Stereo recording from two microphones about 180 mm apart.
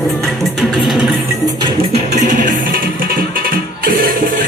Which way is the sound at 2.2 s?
50° right (ahead or behind).